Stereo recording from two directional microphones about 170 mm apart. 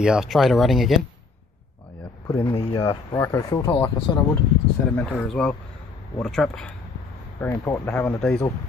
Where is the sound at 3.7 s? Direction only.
30° left (ahead or behind).